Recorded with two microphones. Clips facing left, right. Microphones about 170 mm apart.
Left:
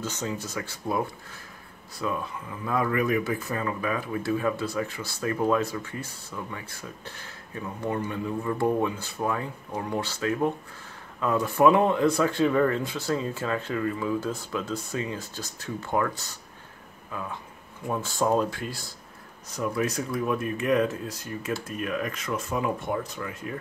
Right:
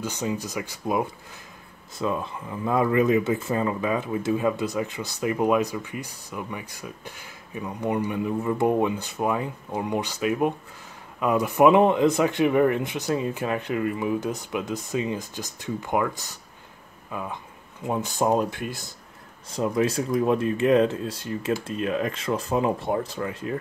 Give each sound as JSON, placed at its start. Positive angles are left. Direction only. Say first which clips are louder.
{"t": 0.0, "sound": "speech", "louder": "right 3 dB", "side_deg": -15}